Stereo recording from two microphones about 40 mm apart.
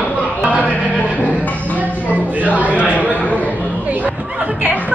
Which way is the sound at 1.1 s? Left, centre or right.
Left.